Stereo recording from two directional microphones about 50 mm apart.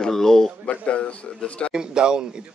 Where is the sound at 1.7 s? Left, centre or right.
Centre.